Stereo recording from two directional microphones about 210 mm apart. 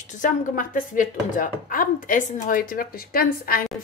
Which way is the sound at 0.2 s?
40° left (ahead or behind).